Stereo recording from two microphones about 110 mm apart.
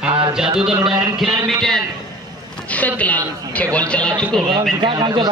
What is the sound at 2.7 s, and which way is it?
A woman's voice, 15° left (ahead or behind).